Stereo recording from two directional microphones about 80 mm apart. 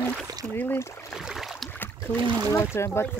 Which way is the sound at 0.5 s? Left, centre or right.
Left.